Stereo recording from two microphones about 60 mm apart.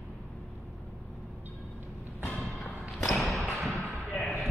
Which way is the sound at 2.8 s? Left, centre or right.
Centre.